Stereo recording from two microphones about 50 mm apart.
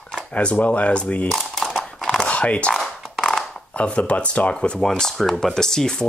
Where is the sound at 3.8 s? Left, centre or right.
Left.